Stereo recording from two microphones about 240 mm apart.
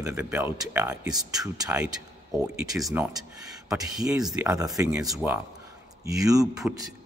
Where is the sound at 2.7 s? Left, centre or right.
Centre.